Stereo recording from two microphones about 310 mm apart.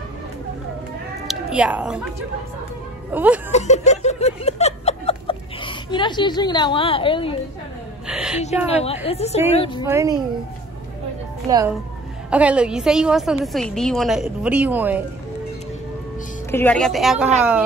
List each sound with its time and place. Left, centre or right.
1.2 s a sound: centre
3.1 s speech: centre
3.5 s a sound: left
8.1 s a woman's voice: centre
8.6 s a woman's voice: centre
9.8 s a woman's voice: centre
11.4 s a woman's voice: centre
16.5 s a woman's voice: centre